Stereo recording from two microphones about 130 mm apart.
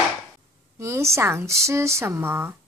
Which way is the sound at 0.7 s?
20° right (ahead or behind).